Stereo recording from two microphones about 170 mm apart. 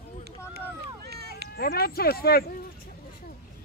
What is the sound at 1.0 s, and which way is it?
Run, 70° right (ahead or behind).